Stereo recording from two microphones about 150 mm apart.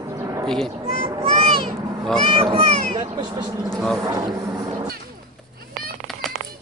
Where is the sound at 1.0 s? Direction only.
35° right (ahead or behind).